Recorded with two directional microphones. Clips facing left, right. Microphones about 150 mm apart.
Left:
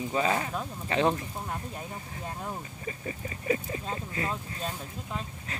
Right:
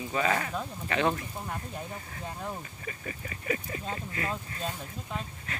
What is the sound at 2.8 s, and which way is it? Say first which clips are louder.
Speech: left 3 dB; 25° left (ahead or behind).